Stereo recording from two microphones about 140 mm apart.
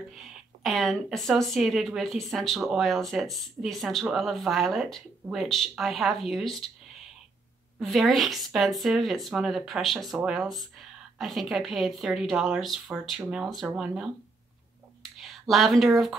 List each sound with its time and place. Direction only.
0.1 s speech: centre (ahead or behind)
7.8 s speech: centre (ahead or behind)
15.1 s speech: centre (ahead or behind)